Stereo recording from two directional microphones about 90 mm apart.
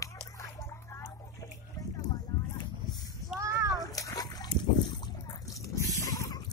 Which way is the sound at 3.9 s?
45° left (ahead or behind).